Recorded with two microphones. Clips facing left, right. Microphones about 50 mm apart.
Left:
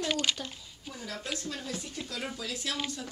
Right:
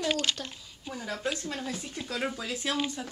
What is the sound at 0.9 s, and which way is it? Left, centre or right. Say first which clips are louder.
Speech: right 5 dB; right.